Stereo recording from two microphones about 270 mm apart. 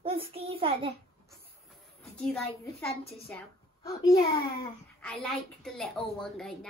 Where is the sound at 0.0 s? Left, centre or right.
Right.